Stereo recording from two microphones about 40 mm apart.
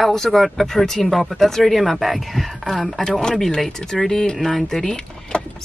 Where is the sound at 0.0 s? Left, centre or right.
Centre.